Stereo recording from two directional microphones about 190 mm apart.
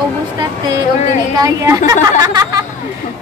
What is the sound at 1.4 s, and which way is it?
A woman's voice, 20° right (ahead or behind).